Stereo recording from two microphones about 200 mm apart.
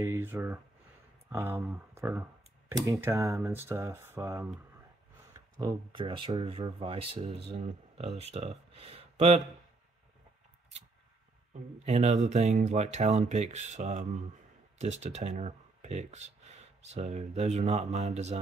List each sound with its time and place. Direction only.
0.0 s speech: 10° right (ahead or behind); by 9.4 s 30° right (ahead or behind)
11.8 s speech: 35° right (ahead or behind)